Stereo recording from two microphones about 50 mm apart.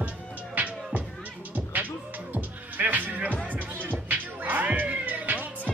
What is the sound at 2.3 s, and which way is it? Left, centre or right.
Music, right.